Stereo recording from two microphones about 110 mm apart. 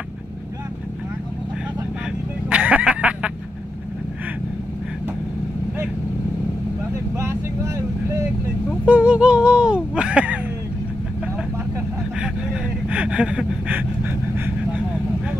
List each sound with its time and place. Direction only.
2.5 s fowl: 10° right (ahead or behind)
7.2 s vehicle: 25° right (ahead or behind)
8.8 s a sound: 10° right (ahead or behind)
12.2 s vehicle: 10° right (ahead or behind)